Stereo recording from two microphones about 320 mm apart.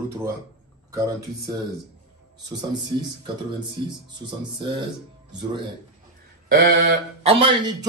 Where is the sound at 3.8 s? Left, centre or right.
Centre.